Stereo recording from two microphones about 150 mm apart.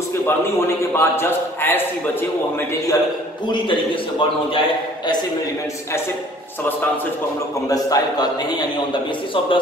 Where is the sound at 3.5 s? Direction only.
35° left (ahead or behind).